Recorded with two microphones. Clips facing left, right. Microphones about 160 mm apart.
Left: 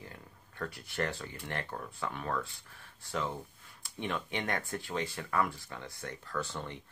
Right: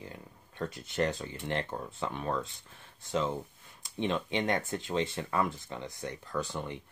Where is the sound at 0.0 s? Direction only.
20° right (ahead or behind).